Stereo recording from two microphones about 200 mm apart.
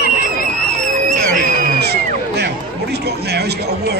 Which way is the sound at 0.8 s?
40° right (ahead or behind).